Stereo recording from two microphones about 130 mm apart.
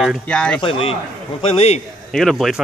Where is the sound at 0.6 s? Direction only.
45° left (ahead or behind).